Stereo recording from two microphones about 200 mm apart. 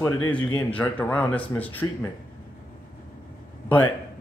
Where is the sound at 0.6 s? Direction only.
5° left (ahead or behind).